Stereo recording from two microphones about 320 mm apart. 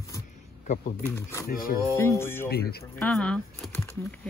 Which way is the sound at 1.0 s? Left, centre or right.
Centre.